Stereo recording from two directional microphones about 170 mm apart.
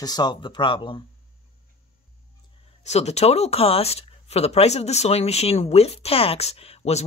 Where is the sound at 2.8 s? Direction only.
40° left (ahead or behind).